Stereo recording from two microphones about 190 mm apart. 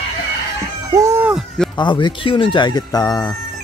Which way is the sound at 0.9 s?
15° right (ahead or behind).